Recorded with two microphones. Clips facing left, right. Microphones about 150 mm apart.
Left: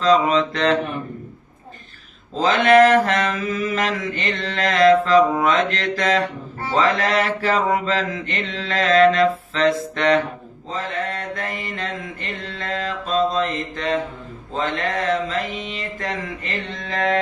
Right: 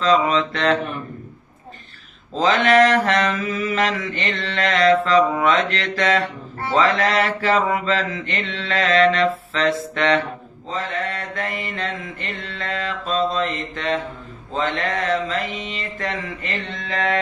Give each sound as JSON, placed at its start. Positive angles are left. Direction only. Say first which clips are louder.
{"t": 0.0, "sound": "mantra", "louder": "left 1 dB", "side_deg": 40}
{"t": 2.4, "sound": "mantra", "louder": "left 2 dB", "side_deg": 40}